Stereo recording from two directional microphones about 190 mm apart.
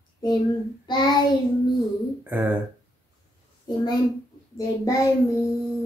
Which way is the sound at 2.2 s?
10° right (ahead or behind).